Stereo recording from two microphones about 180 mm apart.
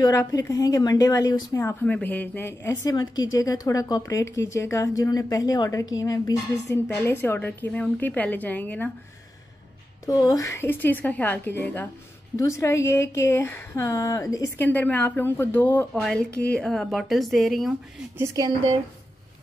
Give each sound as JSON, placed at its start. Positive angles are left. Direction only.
{"t": 0.0, "sound": "a woman's voice", "side_deg": 20}
{"t": 10.0, "sound": "a woman's voice", "side_deg": 20}
{"t": 18.1, "sound": "speech", "side_deg": -20}